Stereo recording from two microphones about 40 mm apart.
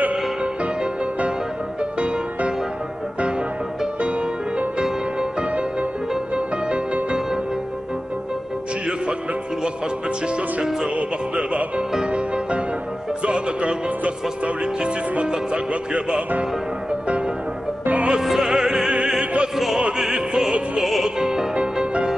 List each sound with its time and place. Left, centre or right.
0.1 s music: right
1.8 s music: right
5.5 s music: right
10.2 s music: centre
11.0 s music: right
17.8 s music: right
18.2 s music: centre
19.5 s opera: centre
20.0 s music: centre